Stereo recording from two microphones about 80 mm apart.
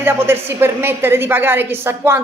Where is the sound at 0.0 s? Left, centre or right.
Right.